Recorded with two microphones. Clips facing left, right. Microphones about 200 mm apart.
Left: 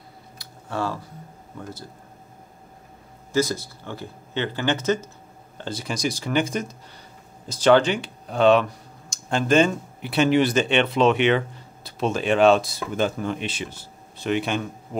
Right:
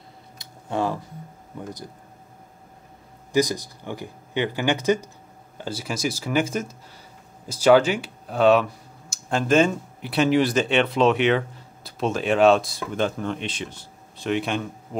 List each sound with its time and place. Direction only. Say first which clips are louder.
0.4 s a sound: right 3 dB; 20° right (ahead or behind)
1.6 s speech: right 2 dB; 15° right (ahead or behind)
3.3 s speech: right 1 dB; 15° right (ahead or behind); by 14.7 s centre (ahead or behind)